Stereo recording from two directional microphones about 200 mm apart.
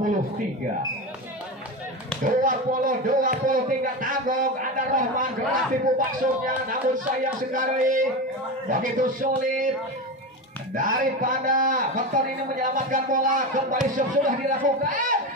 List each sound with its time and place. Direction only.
2.2 s a man's voice: 40° right (ahead or behind)
10.7 s a man's voice: 45° right (ahead or behind)